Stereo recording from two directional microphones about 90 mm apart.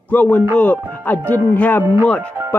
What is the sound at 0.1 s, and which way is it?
Speech, 20° left (ahead or behind).